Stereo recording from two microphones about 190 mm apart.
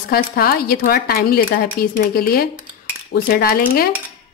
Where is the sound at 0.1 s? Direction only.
50° left (ahead or behind).